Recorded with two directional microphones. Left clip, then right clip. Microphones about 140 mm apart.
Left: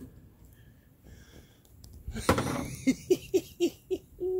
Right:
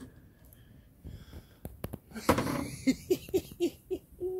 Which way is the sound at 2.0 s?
20° left (ahead or behind).